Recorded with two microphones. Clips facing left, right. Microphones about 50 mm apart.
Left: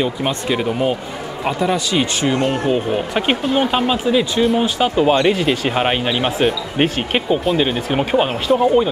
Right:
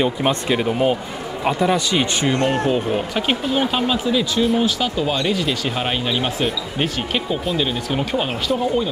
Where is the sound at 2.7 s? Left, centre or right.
Centre.